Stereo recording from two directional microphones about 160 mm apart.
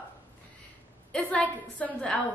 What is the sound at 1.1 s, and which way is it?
A woman's voice, 10° left (ahead or behind).